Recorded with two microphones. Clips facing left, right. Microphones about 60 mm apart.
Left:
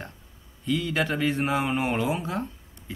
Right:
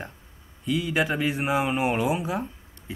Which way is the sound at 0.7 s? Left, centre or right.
Centre.